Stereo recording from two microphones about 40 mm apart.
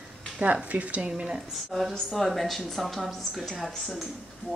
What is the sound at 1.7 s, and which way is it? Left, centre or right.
Speech, centre.